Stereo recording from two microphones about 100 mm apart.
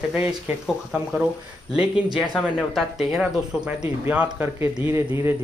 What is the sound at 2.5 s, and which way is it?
Speech, centre (ahead or behind).